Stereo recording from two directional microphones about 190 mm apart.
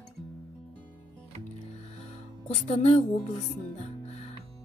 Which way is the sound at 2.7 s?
35° left (ahead or behind).